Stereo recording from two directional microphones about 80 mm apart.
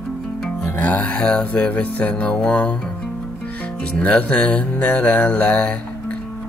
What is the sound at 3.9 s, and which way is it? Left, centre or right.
Mantra, centre.